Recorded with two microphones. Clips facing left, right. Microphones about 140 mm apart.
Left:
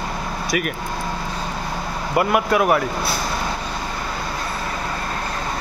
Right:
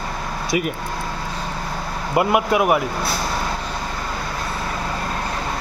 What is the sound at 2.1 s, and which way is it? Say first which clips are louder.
Speech: right 1 dB; 20° right (ahead or behind).